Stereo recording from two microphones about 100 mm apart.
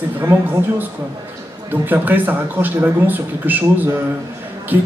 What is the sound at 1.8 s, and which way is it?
A man's voice, 20° right (ahead or behind).